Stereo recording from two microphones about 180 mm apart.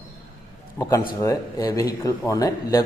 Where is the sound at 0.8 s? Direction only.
20° left (ahead or behind).